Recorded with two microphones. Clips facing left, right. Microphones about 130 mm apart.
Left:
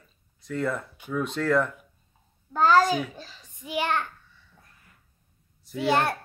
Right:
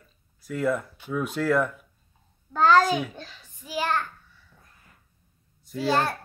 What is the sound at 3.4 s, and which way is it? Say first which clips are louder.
Speech: even; 20° left (ahead or behind).